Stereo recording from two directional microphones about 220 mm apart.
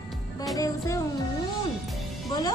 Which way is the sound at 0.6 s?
15° left (ahead or behind).